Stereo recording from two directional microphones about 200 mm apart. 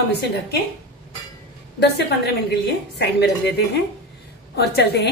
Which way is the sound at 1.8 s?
55° left (ahead or behind).